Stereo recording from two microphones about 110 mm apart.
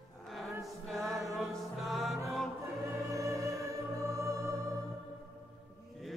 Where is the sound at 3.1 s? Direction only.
30° right (ahead or behind).